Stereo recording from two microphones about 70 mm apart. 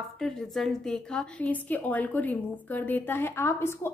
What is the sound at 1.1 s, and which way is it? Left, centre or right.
A woman's voice, centre.